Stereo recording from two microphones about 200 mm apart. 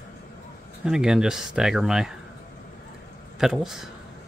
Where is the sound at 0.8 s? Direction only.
5° right (ahead or behind).